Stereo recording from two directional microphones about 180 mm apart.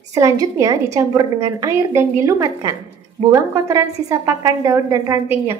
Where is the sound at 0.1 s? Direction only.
20° right (ahead or behind).